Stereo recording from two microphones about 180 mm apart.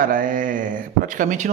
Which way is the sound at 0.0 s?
50° right (ahead or behind).